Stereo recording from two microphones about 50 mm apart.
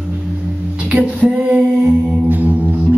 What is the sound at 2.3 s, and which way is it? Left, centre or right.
Music, right.